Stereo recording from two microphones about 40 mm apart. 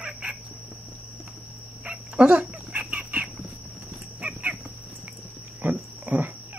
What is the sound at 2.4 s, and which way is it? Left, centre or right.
Fowl, right.